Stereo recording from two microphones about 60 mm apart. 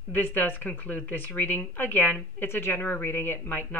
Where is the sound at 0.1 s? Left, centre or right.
Left.